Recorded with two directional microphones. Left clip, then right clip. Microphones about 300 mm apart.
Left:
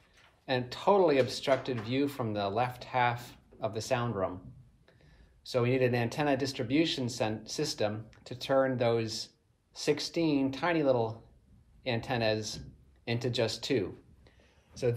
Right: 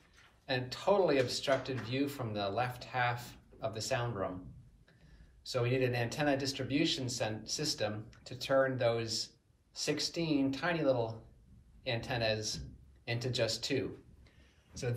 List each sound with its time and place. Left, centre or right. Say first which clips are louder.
0.5 s speech: left 4 dB; left
5.4 s a man's voice: left 5 dB; left